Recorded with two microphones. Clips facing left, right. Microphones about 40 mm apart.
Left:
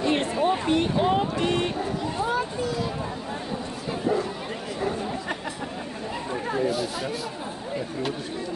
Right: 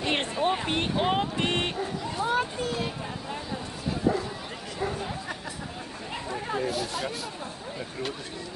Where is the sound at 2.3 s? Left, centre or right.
Right.